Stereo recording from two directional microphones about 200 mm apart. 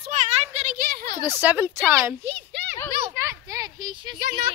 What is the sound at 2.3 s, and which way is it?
Speech, 60° right (ahead or behind).